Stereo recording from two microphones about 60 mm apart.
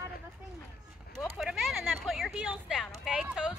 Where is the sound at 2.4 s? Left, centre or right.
Right.